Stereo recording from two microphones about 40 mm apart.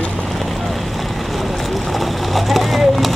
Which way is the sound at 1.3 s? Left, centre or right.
Centre.